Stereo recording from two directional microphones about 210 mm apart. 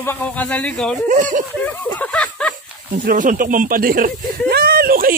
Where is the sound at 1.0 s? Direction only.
35° right (ahead or behind).